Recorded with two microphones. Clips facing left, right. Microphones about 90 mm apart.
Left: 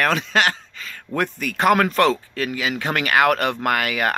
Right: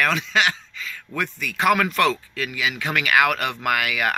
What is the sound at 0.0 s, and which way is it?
Speech, 45° left (ahead or behind).